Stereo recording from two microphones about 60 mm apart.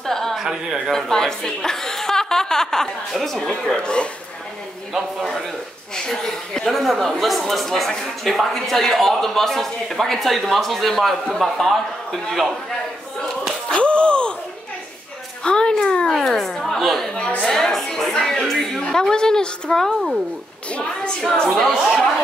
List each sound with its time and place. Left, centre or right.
0.0 s a sound: centre
0.4 s speech: centre
0.9 s speech: centre
3.7 s speech: centre
5.9 s speech: centre
13.7 s a sound: centre
15.4 s a sound: centre
17.5 s music: centre
18.4 s speech: centre; by 21.1 s left
21.2 s speech: centre